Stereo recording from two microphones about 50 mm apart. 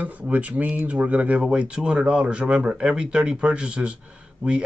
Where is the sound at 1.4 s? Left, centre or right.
Centre.